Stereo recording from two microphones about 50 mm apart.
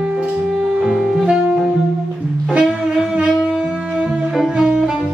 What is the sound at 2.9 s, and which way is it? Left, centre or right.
Wind instrument, centre.